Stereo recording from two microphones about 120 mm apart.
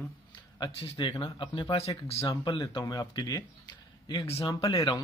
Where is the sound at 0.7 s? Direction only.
50° left (ahead or behind).